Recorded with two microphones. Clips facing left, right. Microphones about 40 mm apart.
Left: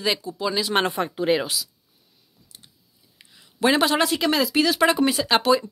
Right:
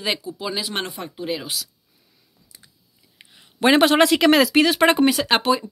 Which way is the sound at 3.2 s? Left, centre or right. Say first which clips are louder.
Left 1 dB; right.